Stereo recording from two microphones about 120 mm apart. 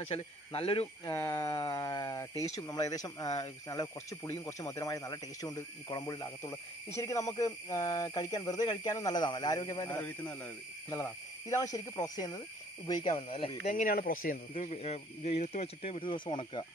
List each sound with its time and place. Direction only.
0.1 s speech: 50° left (ahead or behind)
1.1 s speech: 20° left (ahead or behind)
9.8 s a man's voice: 15° left (ahead or behind)
10.9 s speech: 25° left (ahead or behind)
13.0 s speech: 60° left (ahead or behind); by 16.6 s 45° left (ahead or behind)